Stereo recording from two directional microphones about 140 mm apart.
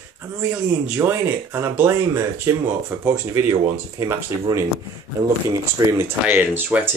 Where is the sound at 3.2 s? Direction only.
25° right (ahead or behind).